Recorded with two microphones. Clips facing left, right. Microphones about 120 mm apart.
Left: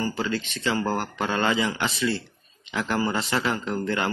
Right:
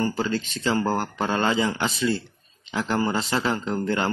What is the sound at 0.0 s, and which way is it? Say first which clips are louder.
Speech: right 2 dB; 30° right (ahead or behind).